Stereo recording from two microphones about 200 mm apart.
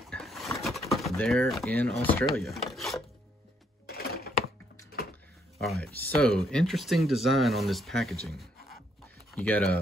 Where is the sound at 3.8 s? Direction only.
50° left (ahead or behind).